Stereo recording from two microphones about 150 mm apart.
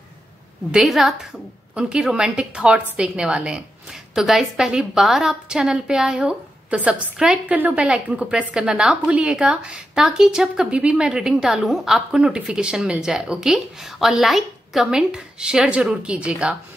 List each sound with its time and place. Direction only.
0.7 s a woman's voice: centre (ahead or behind)